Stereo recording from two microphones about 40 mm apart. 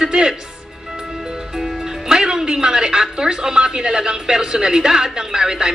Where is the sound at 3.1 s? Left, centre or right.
Centre.